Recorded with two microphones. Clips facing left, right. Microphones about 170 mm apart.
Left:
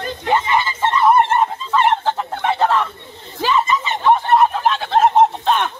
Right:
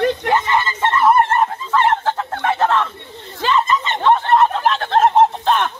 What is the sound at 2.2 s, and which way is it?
Bird, 10° left (ahead or behind).